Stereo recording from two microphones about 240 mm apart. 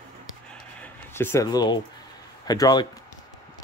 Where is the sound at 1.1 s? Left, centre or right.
Centre.